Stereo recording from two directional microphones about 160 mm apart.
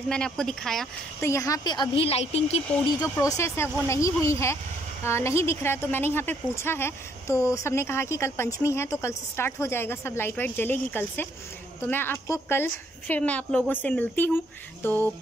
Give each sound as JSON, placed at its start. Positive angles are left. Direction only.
{"t": 0.1, "sound": "speech", "side_deg": 5}
{"t": 1.2, "sound": "a woman's voice", "side_deg": 20}
{"t": 3.2, "sound": "a woman's voice", "side_deg": 20}